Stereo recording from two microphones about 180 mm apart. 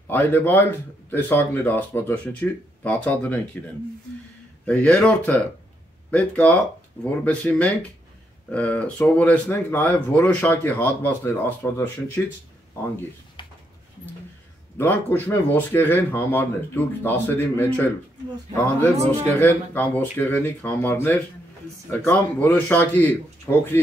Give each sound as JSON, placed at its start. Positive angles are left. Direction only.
{"t": 0.1, "sound": "speech", "side_deg": 10}
{"t": 13.4, "sound": "dog", "side_deg": 25}
{"t": 14.8, "sound": "speech", "side_deg": 10}
{"t": 19.3, "sound": "speech", "side_deg": 10}